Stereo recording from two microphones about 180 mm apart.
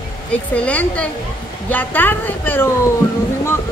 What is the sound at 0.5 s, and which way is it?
A woman's voice, 10° left (ahead or behind).